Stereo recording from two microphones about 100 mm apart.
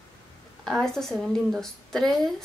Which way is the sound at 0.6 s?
5° left (ahead or behind).